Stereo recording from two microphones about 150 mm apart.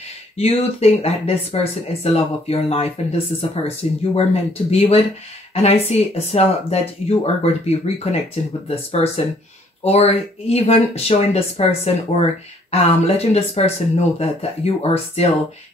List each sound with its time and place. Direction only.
0.4 s speech: 45° left (ahead or behind)